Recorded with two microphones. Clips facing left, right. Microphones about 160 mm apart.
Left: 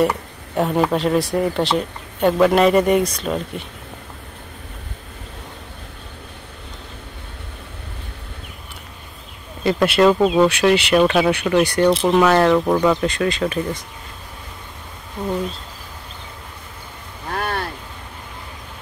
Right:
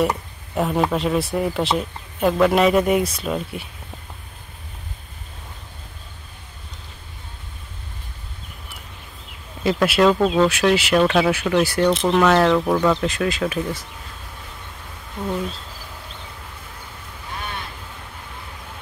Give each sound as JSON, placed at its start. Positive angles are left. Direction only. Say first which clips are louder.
{"t": 0.6, "sound": "speech", "louder": "left 2 dB", "side_deg": 0}
{"t": 9.6, "sound": "speech", "louder": "left 2 dB", "side_deg": 0}
{"t": 10.2, "sound": "speech", "louder": "left 2 dB", "side_deg": 15}
{"t": 10.5, "sound": "speech", "louder": "left 2 dB", "side_deg": 0}
{"t": 13.0, "sound": "speech", "louder": "left 2 dB", "side_deg": -5}
{"t": 15.1, "sound": "speech", "louder": "left 2 dB", "side_deg": 10}
{"t": 17.3, "sound": "a sound", "louder": "left 8 dB", "side_deg": 65}